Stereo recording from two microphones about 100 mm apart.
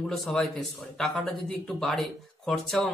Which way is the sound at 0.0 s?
5° left (ahead or behind).